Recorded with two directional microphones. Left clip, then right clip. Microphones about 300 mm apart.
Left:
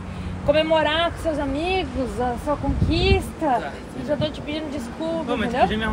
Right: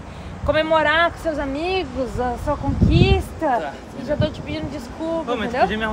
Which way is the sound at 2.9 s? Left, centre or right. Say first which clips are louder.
Right 1 dB; centre.